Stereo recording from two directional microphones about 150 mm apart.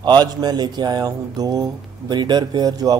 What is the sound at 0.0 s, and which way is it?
Speech, 30° right (ahead or behind).